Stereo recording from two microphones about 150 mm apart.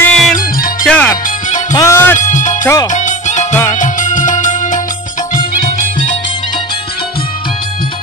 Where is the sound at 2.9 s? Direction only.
55° left (ahead or behind).